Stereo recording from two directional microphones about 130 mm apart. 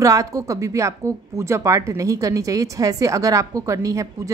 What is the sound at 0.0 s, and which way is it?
Speech, 25° right (ahead or behind).